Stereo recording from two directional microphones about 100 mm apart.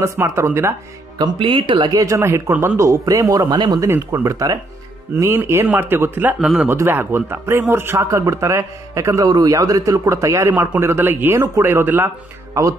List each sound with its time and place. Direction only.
0.0 s speech: 30° right (ahead or behind)
1.1 s speech: 50° right (ahead or behind)
3.8 s speech: 30° right (ahead or behind); by 6.7 s 10° right (ahead or behind)
6.7 s speech: 20° right (ahead or behind)
10.5 s speech: 15° right (ahead or behind)